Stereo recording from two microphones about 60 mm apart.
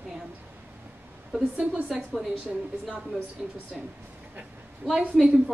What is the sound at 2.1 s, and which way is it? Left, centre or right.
Speech, centre.